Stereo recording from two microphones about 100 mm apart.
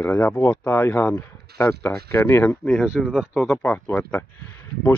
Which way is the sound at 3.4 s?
5° left (ahead or behind).